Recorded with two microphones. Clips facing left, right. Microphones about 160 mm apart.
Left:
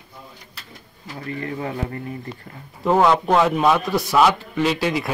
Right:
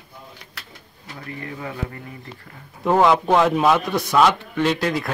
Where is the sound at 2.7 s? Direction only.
Centre (ahead or behind).